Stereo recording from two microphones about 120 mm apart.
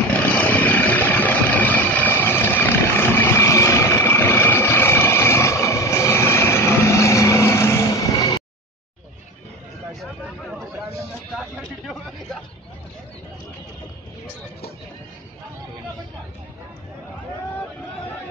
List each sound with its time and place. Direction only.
0.1 s vehicle: 15° left (ahead or behind)